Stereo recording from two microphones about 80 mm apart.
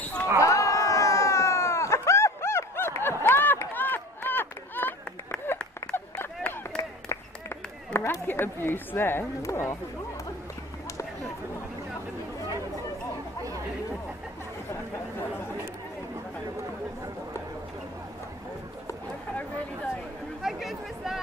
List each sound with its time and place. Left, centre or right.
0.0 s basketball bounce: centre
0.4 s a sound: left
20.4 s chatter: centre